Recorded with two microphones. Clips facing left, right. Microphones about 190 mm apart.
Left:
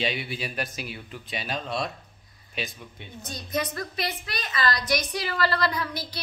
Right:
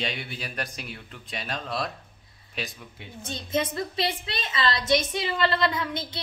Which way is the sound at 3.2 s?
25° right (ahead or behind).